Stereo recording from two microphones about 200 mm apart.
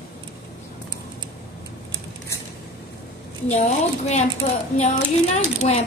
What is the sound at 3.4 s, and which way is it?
Speech, 35° left (ahead or behind).